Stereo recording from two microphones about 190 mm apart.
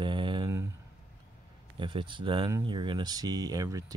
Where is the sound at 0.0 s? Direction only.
25° right (ahead or behind).